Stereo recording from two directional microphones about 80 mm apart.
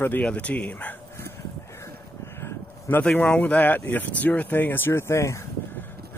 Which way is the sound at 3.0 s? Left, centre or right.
Centre.